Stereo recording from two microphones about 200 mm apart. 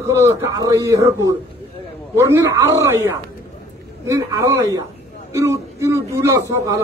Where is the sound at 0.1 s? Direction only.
15° right (ahead or behind).